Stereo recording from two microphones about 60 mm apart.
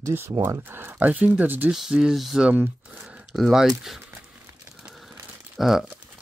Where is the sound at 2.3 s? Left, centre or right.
Centre.